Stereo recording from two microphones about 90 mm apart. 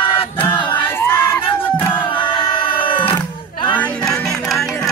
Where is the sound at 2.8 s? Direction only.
70° left (ahead or behind).